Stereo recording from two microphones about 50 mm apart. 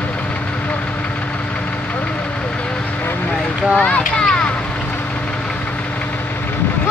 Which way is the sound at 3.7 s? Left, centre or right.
Left.